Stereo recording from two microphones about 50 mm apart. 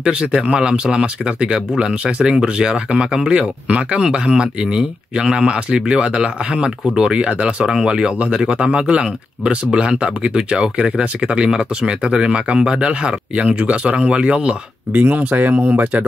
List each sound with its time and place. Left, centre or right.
0.0 s speech: centre
14.9 s speech: right